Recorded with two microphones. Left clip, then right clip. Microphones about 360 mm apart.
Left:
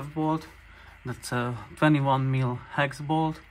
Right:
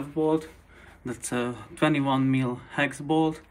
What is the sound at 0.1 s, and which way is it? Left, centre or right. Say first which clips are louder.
Speech: right 4 dB; left.